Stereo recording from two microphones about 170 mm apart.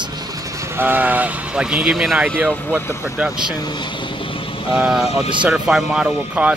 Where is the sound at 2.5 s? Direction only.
10° left (ahead or behind).